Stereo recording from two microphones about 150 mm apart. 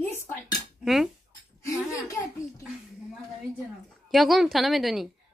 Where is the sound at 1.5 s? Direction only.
20° left (ahead or behind).